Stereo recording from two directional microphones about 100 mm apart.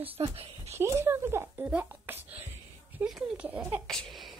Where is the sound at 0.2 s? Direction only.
65° right (ahead or behind).